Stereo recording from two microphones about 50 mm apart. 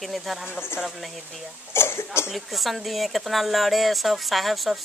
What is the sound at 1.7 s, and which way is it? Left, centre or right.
Speech, left.